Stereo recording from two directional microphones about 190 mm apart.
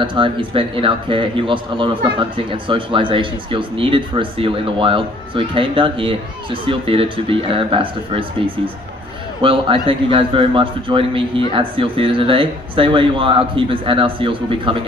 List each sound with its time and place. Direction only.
0.0 s speech: 25° right (ahead or behind)